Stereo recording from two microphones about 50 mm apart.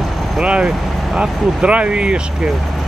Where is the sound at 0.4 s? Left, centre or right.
Right.